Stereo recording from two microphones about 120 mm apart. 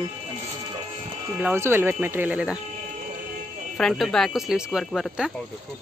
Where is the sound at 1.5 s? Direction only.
20° right (ahead or behind).